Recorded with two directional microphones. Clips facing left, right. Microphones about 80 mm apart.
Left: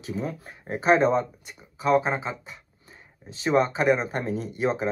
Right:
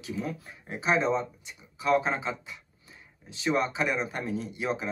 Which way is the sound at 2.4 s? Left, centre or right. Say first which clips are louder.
Left 1 dB; left.